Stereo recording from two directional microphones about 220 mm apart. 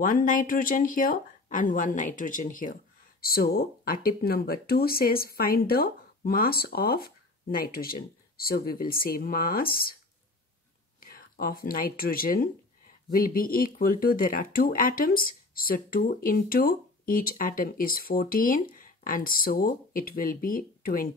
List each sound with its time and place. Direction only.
0.0 s speech: 40° left (ahead or behind)
11.0 s speech: 40° left (ahead or behind)